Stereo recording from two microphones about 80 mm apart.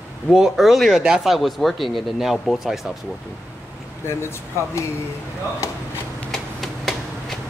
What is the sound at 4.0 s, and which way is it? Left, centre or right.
Speech, left.